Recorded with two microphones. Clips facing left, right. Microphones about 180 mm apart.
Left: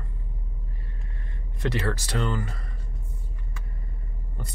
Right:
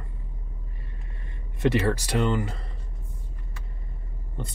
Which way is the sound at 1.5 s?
20° right (ahead or behind).